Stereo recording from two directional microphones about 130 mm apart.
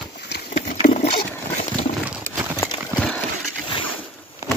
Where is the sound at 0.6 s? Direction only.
70° left (ahead or behind).